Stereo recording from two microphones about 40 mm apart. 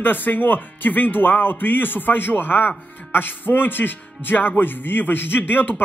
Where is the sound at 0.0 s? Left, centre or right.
Left.